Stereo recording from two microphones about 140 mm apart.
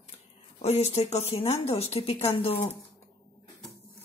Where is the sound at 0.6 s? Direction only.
50° left (ahead or behind).